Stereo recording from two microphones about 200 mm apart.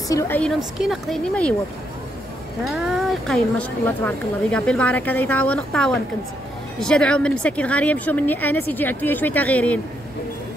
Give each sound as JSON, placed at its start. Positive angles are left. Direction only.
{"t": 0.1, "sound": "speech", "side_deg": 10}
{"t": 0.7, "sound": "speech", "side_deg": 0}
{"t": 2.6, "sound": "speech", "side_deg": 0}